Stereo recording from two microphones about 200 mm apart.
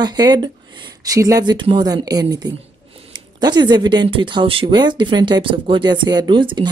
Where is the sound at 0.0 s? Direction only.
20° right (ahead or behind).